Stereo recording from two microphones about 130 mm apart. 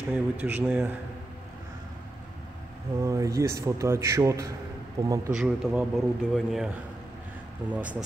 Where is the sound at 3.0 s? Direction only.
25° right (ahead or behind).